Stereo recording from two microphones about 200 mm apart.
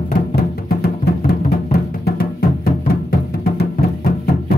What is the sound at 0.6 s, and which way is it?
Music, 50° left (ahead or behind).